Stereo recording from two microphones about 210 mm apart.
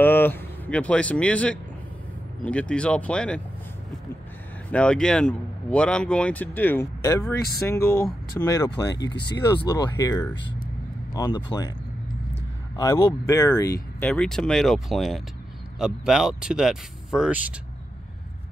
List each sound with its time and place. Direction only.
0.0 s speech: 10° left (ahead or behind)
4.6 s speech: 5° left (ahead or behind)
12.7 s speech: 15° left (ahead or behind); by 17.4 s centre (ahead or behind)